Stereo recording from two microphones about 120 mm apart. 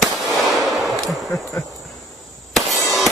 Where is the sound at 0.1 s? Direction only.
30° right (ahead or behind).